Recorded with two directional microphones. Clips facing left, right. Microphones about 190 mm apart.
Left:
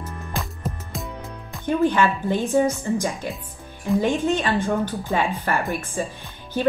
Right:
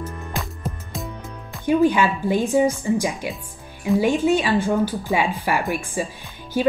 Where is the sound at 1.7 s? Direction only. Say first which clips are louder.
Right 2 dB; 10° right (ahead or behind).